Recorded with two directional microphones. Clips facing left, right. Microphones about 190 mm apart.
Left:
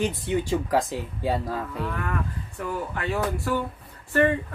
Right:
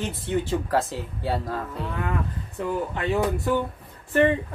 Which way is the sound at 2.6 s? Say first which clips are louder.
Right 3 dB; 20° right (ahead or behind).